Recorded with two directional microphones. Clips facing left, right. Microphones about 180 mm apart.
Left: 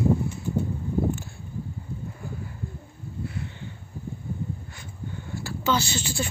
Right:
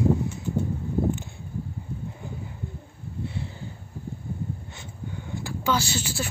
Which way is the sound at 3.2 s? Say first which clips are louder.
Right 1 dB; 30° right (ahead or behind).